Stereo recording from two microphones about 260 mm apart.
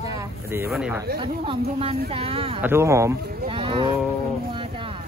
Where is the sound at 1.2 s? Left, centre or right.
Centre.